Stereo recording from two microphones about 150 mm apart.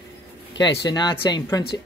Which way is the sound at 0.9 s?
30° left (ahead or behind).